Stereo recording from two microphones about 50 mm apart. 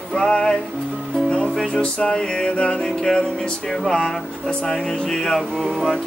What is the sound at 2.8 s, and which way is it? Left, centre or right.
Music, centre.